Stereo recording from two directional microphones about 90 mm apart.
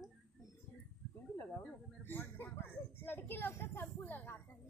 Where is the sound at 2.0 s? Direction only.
25° left (ahead or behind).